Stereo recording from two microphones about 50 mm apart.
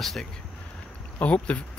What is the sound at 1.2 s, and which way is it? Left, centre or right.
Speech, left.